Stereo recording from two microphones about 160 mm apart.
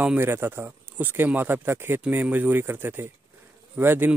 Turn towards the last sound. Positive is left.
turn(degrees=-15)  # may be behind; listen again after turning